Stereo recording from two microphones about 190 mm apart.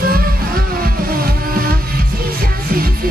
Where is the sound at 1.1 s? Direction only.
50° right (ahead or behind).